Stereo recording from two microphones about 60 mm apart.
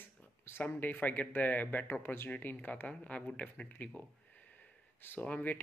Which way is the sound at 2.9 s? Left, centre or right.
Centre.